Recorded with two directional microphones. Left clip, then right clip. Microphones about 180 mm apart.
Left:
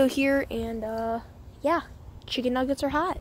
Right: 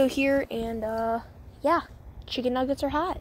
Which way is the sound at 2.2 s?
20° left (ahead or behind).